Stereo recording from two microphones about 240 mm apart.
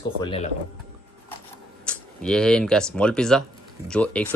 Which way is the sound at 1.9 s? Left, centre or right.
Centre.